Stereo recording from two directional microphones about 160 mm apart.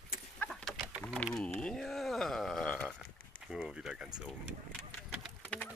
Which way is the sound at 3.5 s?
5° right (ahead or behind).